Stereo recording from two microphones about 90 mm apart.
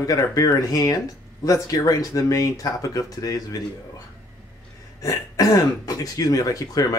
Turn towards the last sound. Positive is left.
turn(degrees=40)  # may be behind; listen again after turning